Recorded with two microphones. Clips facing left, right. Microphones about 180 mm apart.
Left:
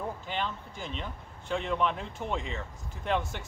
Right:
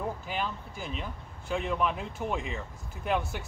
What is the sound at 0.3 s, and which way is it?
Speech, 5° right (ahead or behind).